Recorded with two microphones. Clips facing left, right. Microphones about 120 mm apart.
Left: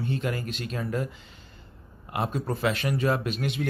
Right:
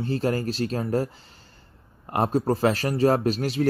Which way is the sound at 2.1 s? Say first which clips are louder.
Right 7 dB; 40° right (ahead or behind).